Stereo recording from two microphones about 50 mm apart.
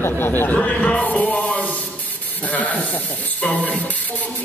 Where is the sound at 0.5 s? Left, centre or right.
Left.